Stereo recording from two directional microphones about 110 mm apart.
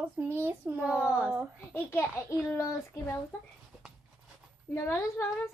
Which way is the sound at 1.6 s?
20° left (ahead or behind).